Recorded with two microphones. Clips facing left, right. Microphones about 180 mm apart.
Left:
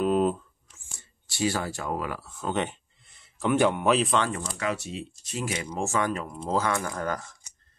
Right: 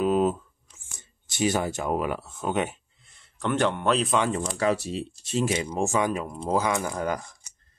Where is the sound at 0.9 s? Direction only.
20° right (ahead or behind).